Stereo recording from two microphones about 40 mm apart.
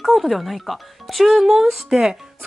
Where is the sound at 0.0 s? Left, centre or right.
Centre.